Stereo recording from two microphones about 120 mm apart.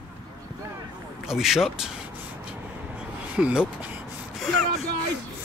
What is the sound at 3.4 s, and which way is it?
Speech, 10° right (ahead or behind).